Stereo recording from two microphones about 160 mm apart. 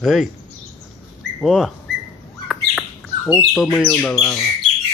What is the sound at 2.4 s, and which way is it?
Bird, centre (ahead or behind).